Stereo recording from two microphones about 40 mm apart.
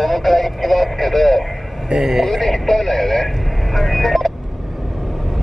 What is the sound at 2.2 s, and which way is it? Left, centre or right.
Speech, centre.